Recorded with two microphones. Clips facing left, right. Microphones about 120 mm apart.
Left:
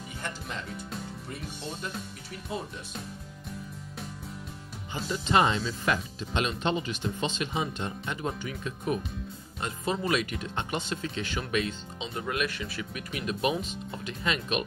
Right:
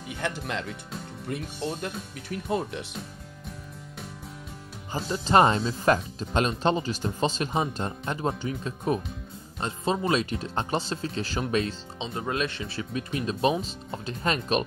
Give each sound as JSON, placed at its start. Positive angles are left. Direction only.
{"t": 0.2, "sound": "speech", "side_deg": -70}
{"t": 4.9, "sound": "speech", "side_deg": -35}